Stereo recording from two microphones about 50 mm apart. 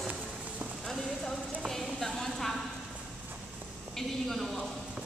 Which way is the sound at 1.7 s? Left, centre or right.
Centre.